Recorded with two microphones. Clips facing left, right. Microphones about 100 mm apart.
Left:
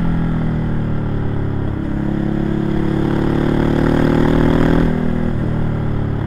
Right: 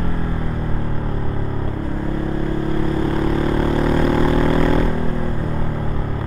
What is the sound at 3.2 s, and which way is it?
Vehicle, 45° left (ahead or behind).